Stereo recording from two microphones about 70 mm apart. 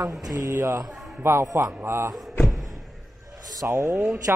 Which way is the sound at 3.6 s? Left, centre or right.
Right.